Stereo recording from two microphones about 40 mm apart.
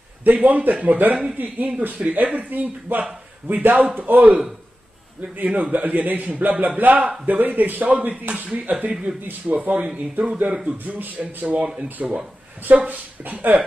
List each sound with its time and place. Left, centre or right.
0.2 s a man's voice: right
8.5 s speech: right
11.0 s a man's voice: right
11.4 s speech: right
12.7 s a man's voice: right